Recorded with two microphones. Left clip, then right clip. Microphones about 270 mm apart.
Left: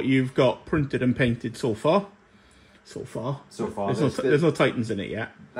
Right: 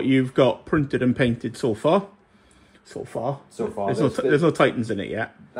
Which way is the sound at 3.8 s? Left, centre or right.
Centre.